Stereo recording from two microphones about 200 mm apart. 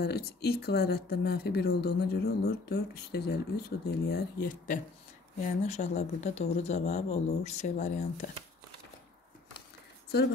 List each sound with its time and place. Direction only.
0.0 s speech: 50° left (ahead or behind)
5.7 s speech: 35° left (ahead or behind)